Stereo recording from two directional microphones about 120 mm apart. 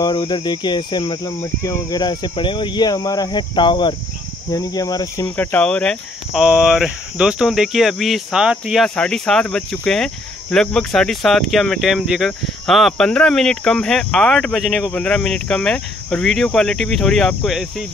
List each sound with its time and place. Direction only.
0.0 s speech: 40° left (ahead or behind)
1.4 s speech: 25° left (ahead or behind)
2.0 s speech: 35° left (ahead or behind)
5.3 s speech: 15° left (ahead or behind)
6.3 s speech: 5° right (ahead or behind)